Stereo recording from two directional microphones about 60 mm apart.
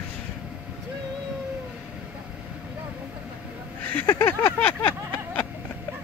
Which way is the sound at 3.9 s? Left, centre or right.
Left.